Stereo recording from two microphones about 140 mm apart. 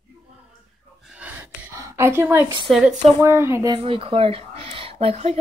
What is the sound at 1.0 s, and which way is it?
Gasp, 10° right (ahead or behind).